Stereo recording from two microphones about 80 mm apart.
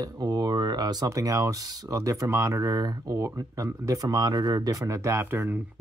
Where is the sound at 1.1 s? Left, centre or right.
Right.